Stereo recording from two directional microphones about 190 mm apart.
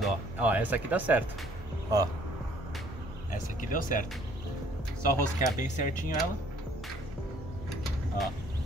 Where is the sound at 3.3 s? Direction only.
45° left (ahead or behind).